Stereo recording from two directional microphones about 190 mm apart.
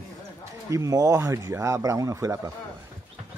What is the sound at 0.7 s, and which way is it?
A man's voice, 15° right (ahead or behind).